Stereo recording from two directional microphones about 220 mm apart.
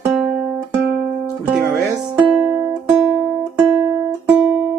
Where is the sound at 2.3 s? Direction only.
5° right (ahead or behind).